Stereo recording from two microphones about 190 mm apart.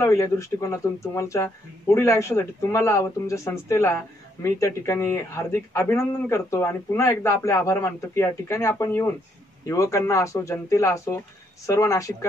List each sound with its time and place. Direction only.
0.0 s speech: 15° left (ahead or behind)